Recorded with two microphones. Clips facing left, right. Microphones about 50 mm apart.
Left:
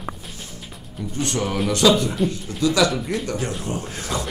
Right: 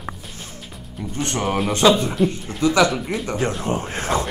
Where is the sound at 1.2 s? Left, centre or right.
Right.